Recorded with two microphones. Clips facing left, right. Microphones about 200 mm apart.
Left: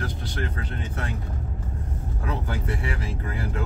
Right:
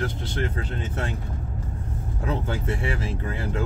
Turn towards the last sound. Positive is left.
turn(degrees=-25)  # may be behind; listen again after turning